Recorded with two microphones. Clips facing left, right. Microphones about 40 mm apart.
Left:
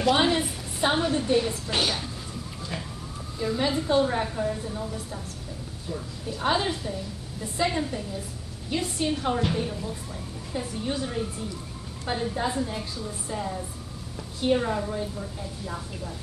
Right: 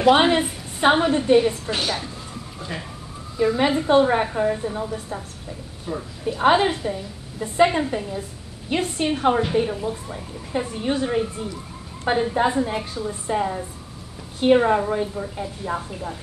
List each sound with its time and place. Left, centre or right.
0.1 s a woman's voice: right
1.7 s a woman's voice: centre
3.3 s a woman's voice: right
3.6 s a woman's voice: right